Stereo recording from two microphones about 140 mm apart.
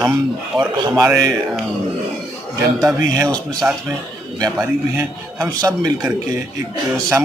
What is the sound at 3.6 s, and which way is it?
Speech, 15° right (ahead or behind).